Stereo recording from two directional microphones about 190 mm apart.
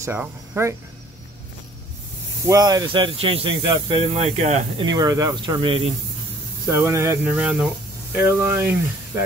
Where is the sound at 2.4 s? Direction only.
20° right (ahead or behind).